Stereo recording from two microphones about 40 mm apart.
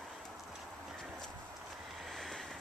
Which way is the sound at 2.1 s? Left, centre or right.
Centre.